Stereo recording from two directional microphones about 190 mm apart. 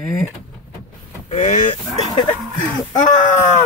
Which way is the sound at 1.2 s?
40° left (ahead or behind).